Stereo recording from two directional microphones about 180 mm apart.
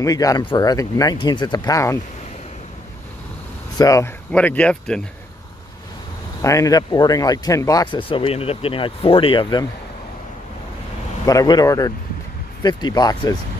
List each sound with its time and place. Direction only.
0.0 s speech: 20° left (ahead or behind)
3.7 s speech: 20° left (ahead or behind)
4.3 s speech: 5° left (ahead or behind)
6.4 s speech: 20° left (ahead or behind)
11.2 s speech: 20° left (ahead or behind)